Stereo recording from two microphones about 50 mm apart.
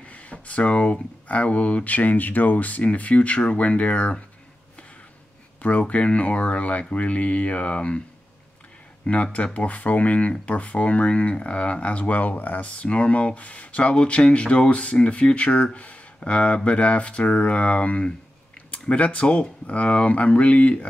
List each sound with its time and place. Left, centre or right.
0.1 s a sound: left
1.3 s speech: left
2.0 s speech: left
5.6 s speech: left
9.0 s speech: left